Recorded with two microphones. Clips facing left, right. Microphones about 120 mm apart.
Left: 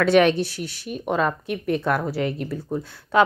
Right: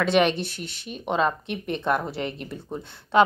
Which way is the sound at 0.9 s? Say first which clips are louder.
Left 1 dB; 5° left (ahead or behind).